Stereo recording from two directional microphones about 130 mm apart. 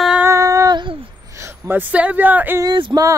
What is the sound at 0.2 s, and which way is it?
Female singing, 25° right (ahead or behind).